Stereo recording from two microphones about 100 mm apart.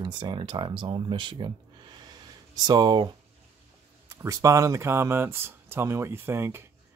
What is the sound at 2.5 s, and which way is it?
Speech, 45° right (ahead or behind).